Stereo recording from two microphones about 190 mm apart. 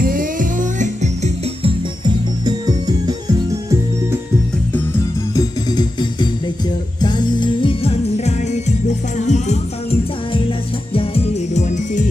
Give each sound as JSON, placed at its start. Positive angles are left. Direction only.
{"t": 0.0, "sound": "music", "side_deg": -45}
{"t": 2.0, "sound": "music", "side_deg": -20}
{"t": 5.3, "sound": "music", "side_deg": 20}